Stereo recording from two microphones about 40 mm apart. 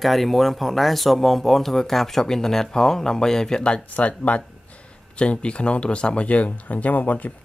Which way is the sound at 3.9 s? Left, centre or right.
Left.